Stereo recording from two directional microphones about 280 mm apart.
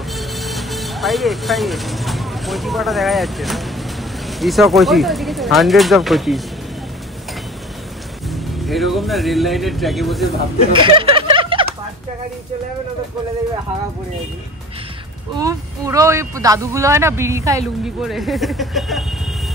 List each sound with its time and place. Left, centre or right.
0.1 s music: centre
4.3 s speech: centre
8.3 s speech: centre
10.7 s a sound: centre
15.3 s speech: centre